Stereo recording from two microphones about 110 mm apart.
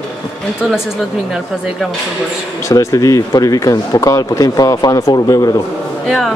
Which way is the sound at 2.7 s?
30° left (ahead or behind).